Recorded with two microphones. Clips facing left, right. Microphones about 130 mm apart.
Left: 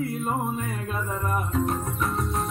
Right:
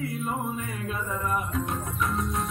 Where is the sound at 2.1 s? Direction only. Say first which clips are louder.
Even; centre (ahead or behind).